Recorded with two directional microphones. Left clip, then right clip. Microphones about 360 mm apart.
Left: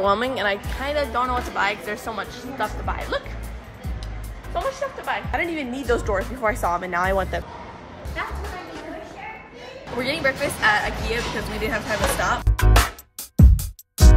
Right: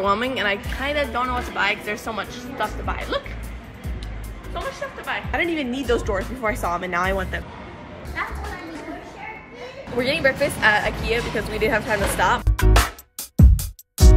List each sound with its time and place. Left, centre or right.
0.0 s speech: centre
4.6 s music: left
5.3 s speech: centre
9.9 s speech: centre
13.4 s music: centre